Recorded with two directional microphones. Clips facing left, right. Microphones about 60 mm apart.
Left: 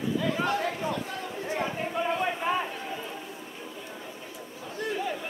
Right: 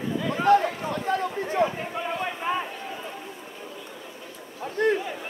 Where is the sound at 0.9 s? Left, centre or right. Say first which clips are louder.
Right 7 dB; right.